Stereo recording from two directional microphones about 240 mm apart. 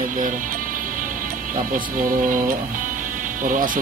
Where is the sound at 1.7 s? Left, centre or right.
Right.